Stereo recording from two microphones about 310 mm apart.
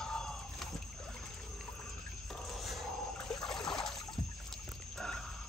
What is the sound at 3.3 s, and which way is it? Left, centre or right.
Trickle, centre.